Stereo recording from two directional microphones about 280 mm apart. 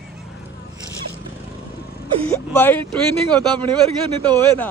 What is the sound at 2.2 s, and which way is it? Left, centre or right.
Speech, centre.